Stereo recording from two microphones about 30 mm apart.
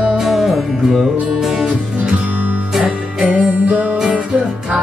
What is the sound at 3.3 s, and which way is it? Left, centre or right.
Music, right.